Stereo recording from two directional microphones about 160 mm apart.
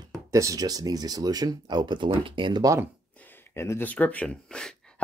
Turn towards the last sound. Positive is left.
turn(degrees=5)  # may be behind; listen again after turning